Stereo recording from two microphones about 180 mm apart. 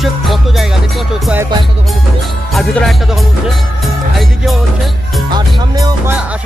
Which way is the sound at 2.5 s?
Centre (ahead or behind).